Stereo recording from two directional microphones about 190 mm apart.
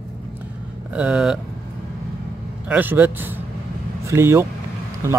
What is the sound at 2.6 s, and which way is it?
Speech, 10° right (ahead or behind).